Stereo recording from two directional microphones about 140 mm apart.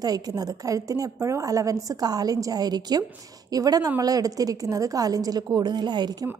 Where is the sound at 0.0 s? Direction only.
25° right (ahead or behind).